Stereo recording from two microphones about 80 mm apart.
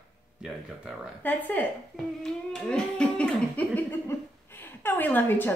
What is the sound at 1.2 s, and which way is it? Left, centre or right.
Speech, left.